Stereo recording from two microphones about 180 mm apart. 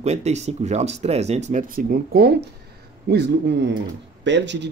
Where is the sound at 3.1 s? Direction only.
75° right (ahead or behind).